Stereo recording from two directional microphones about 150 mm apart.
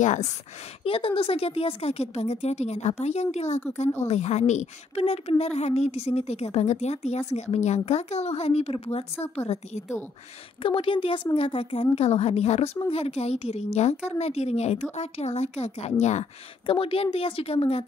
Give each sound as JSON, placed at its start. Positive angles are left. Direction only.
{"t": 0.0, "sound": "a woman's voice", "side_deg": 55}
{"t": 0.8, "sound": "a woman's voice", "side_deg": 40}
{"t": 10.6, "sound": "a woman's voice", "side_deg": 35}
{"t": 16.6, "sound": "speech", "side_deg": 35}